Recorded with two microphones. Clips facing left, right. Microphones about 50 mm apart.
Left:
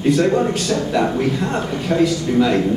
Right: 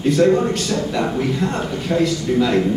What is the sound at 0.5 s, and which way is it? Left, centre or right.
A man's voice, centre.